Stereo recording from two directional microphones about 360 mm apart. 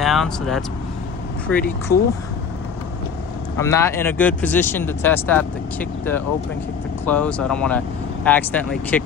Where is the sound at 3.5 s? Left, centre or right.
Centre.